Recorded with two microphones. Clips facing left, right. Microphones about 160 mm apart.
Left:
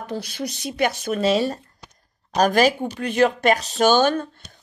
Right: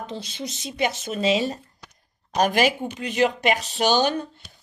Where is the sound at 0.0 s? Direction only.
20° right (ahead or behind).